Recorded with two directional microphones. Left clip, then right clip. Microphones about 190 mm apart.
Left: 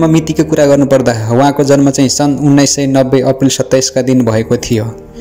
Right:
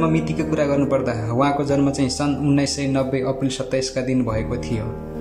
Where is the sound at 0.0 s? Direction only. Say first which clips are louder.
Left 10 dB; 35° left (ahead or behind).